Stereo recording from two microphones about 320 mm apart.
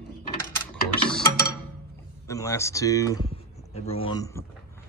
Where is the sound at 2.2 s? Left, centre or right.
Centre.